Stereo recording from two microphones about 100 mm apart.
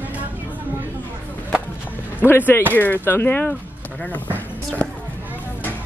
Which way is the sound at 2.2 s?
20° left (ahead or behind).